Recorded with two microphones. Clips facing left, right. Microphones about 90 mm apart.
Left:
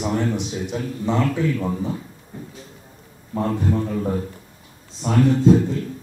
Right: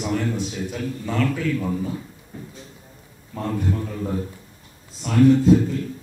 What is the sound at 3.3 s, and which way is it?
A man's voice, 25° left (ahead or behind).